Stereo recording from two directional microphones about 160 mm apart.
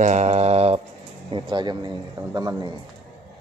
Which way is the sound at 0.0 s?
45° right (ahead or behind).